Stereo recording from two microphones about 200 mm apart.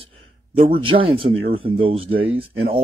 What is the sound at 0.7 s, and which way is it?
Speech, 25° right (ahead or behind).